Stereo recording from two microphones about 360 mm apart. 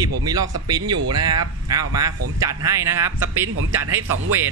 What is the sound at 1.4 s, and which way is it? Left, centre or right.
A man's voice, right.